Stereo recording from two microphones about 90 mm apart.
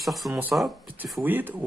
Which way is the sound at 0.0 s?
Centre (ahead or behind).